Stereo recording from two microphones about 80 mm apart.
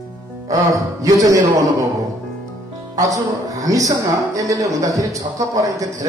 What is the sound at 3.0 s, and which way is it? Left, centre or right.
A man's voice, right.